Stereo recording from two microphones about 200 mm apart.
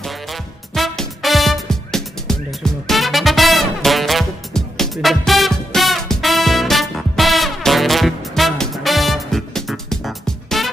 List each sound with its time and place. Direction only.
0.0 s music: centre (ahead or behind)